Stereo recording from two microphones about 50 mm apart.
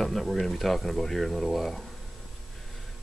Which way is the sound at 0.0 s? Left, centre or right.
Centre.